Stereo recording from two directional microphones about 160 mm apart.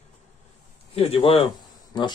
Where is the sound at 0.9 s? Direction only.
40° left (ahead or behind).